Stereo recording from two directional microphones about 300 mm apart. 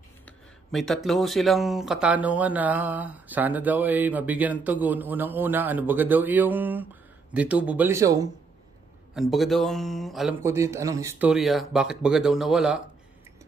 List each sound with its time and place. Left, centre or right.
0.7 s speech: centre